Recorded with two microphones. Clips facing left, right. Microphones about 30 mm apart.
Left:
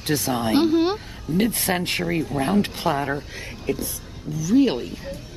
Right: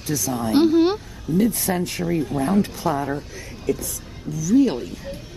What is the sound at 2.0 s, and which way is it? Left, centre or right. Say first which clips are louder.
Speech: right 1 dB; left.